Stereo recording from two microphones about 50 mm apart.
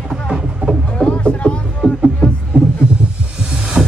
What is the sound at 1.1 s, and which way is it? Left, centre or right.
Music, left.